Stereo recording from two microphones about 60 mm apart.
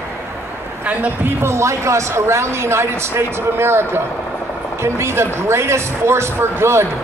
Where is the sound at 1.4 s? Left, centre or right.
Right.